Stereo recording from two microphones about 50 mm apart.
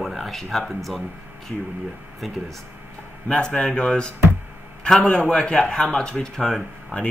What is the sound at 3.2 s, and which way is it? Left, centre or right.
Speech, centre.